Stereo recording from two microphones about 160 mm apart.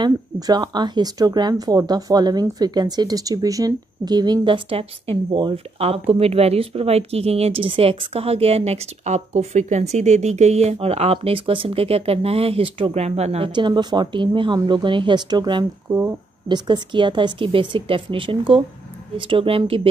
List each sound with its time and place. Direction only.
0.0 s speech: 25° right (ahead or behind)